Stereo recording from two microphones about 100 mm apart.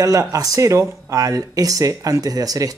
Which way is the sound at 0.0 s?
35° right (ahead or behind).